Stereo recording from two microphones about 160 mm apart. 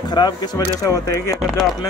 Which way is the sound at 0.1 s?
25° left (ahead or behind).